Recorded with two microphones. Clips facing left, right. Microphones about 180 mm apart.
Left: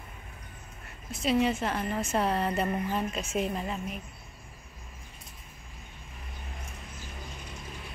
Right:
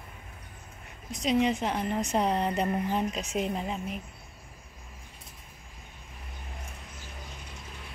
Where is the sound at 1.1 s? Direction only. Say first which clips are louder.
Even; 15° right (ahead or behind).